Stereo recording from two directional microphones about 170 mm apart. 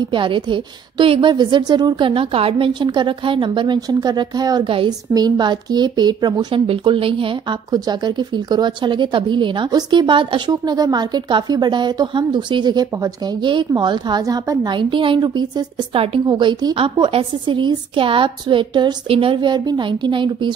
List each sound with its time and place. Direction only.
0.1 s speech: 30° right (ahead or behind)